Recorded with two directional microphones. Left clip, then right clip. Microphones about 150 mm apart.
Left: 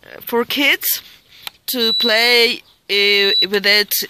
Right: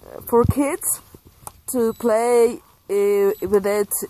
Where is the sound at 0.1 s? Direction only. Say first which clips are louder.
Right 1 dB; 45° left (ahead or behind).